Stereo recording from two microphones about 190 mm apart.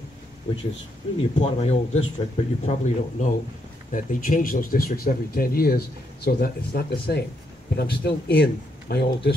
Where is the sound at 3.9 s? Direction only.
45° left (ahead or behind).